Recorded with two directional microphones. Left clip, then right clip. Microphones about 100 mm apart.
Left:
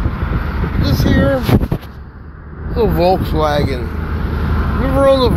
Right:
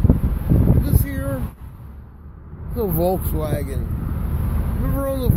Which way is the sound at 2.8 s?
80° right.